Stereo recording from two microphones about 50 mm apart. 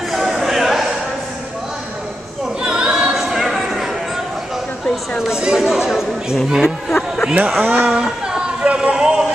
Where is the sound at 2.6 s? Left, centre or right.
Centre.